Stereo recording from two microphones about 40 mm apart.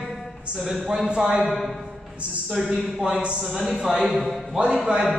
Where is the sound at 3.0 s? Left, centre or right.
Right.